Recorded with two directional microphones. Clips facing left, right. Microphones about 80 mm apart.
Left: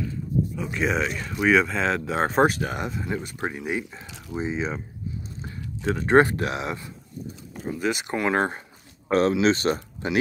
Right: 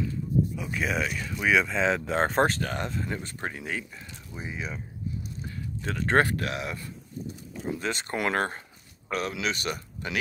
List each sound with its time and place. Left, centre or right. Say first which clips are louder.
0.7 s speech: left 4 dB; centre
2.4 s speech: left 4 dB; centre
5.9 s speech: left 5 dB; left
7.6 s speech: left 4 dB; centre
9.1 s speech: left 10 dB; left